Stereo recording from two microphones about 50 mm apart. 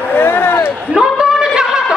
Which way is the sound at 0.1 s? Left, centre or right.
Left.